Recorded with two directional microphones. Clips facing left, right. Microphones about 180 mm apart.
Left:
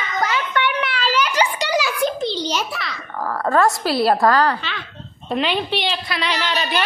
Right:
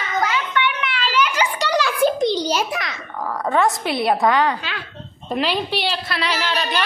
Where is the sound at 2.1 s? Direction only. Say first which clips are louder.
Right 3 dB; 15° right (ahead or behind).